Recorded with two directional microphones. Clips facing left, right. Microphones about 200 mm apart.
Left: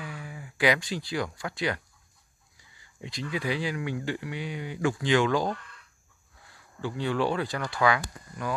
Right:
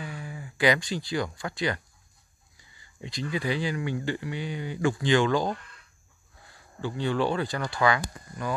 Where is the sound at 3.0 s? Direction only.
5° left (ahead or behind).